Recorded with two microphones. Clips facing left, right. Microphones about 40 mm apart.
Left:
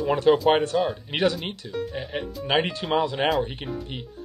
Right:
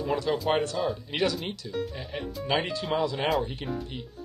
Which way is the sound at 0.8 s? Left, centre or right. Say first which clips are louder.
Left 3 dB; left.